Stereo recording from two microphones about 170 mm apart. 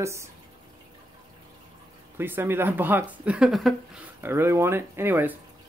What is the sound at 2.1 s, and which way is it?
Speech, 10° right (ahead or behind).